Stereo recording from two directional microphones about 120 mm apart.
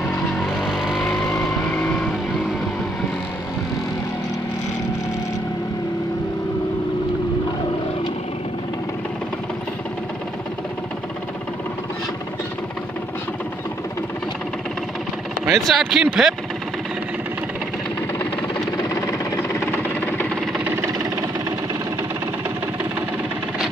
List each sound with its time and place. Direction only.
0.6 s vehicle: 5° right (ahead or behind)
1.4 s vehicle: 10° left (ahead or behind)
15.4 s speech: 5° right (ahead or behind)
19.0 s a sound: 25° left (ahead or behind)